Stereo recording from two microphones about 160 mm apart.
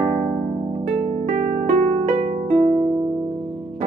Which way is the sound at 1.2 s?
55° right (ahead or behind).